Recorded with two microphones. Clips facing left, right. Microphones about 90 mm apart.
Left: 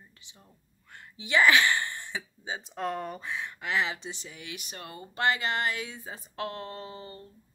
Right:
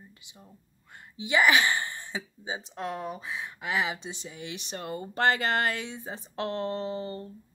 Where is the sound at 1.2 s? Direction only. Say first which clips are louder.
Even; 20° right (ahead or behind).